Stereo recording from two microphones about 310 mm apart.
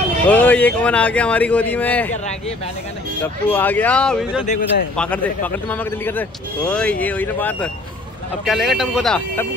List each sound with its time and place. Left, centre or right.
0.3 s a man's voice: centre
3.4 s a man's voice: centre
4.5 s a man's voice: left
4.9 s a man's voice: centre